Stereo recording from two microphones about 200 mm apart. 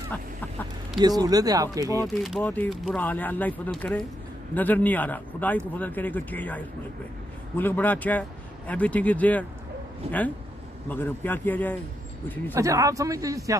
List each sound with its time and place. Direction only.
0.1 s speech: 10° left (ahead or behind)
1.0 s speech: 20° right (ahead or behind)
2.0 s speech: centre (ahead or behind)
10.9 s speech: 10° left (ahead or behind)
12.5 s speech: 15° right (ahead or behind)